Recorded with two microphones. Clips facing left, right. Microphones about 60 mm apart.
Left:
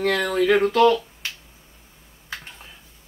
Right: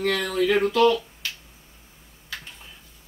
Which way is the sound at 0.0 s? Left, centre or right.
Left.